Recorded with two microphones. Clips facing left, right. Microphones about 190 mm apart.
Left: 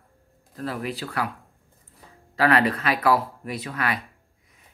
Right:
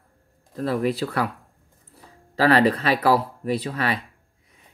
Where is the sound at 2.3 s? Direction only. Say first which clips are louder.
Right 3 dB; 30° right (ahead or behind).